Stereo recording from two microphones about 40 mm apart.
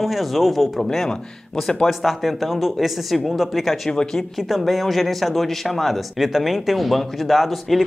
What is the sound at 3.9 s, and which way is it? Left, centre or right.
Speech, centre.